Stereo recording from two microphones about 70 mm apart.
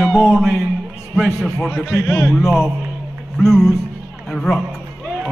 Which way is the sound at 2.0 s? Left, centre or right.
Left.